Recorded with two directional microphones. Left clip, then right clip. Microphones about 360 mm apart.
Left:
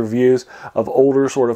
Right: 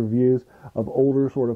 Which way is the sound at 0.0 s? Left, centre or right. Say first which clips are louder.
Left 6 dB; centre.